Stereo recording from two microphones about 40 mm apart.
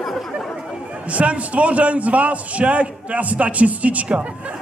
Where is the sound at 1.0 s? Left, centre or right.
Right.